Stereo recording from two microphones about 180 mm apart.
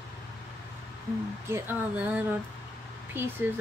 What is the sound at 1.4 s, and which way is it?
Speech, 15° right (ahead or behind).